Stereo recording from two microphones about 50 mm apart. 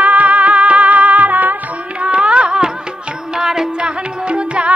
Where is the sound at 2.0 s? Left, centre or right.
Right.